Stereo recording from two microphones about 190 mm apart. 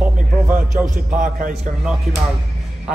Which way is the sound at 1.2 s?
45° right (ahead or behind).